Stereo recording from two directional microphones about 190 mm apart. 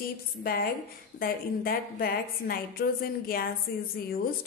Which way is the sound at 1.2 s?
50° left (ahead or behind).